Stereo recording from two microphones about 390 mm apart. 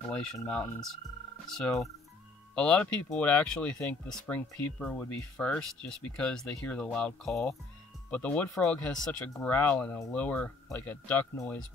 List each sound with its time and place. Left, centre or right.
0.1 s speech: centre